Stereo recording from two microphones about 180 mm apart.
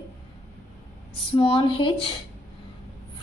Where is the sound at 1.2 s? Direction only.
30° left (ahead or behind).